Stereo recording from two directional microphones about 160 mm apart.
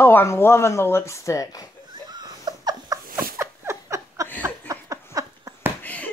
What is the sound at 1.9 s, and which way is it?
Laughter, 25° right (ahead or behind).